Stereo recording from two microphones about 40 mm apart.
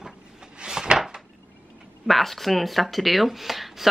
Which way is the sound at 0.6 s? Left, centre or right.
Right.